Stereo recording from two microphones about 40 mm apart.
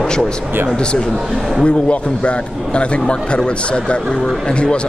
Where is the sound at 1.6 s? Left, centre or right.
Left.